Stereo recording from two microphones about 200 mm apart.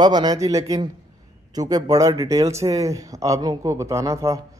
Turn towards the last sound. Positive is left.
turn(degrees=-15)  # may be behind; listen again after turning